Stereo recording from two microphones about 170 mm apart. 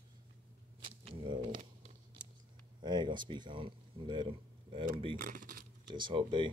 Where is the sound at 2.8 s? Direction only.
25° right (ahead or behind).